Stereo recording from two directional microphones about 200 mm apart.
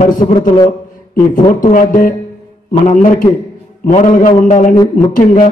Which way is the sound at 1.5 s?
45° left (ahead or behind).